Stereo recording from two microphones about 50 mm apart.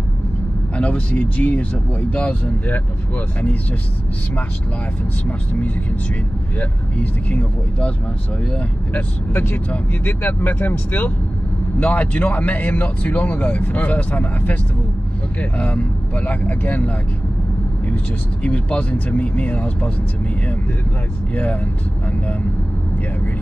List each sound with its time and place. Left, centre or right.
0.7 s speech: left
6.6 s speech: left
8.9 s speech: left
18.4 s speech: left